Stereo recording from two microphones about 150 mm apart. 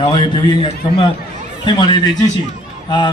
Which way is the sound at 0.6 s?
35° left (ahead or behind).